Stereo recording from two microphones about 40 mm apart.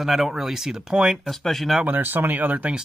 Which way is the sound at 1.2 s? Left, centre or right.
Centre.